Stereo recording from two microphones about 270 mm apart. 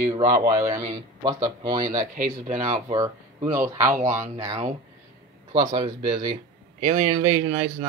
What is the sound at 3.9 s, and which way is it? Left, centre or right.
Speech, right.